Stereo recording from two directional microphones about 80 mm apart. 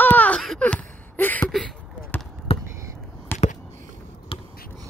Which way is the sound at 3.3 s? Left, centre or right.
Left.